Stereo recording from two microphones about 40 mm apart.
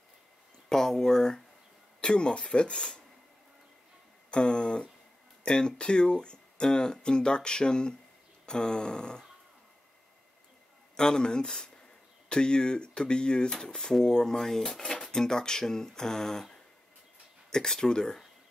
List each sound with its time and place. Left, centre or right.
0.7 s speech: centre
2.0 s speech: left
4.3 s speech: left
11.0 s speech: centre